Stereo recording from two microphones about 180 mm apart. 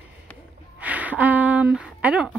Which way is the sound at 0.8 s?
10° right (ahead or behind).